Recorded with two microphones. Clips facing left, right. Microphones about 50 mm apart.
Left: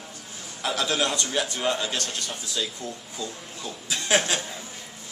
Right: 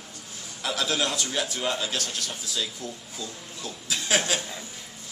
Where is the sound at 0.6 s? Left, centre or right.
Centre.